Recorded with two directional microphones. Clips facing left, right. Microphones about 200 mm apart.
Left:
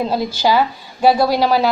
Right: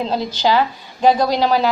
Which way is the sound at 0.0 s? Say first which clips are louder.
Left 1 dB; 10° left (ahead or behind).